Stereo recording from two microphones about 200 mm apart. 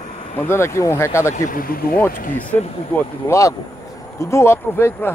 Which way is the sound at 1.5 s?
45° left (ahead or behind).